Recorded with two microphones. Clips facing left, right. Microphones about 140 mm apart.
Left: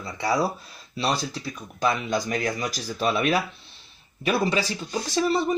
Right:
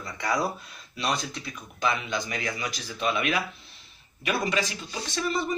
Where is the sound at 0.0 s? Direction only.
30° left (ahead or behind).